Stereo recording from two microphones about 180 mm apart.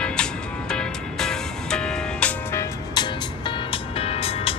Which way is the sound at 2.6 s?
25° left (ahead or behind).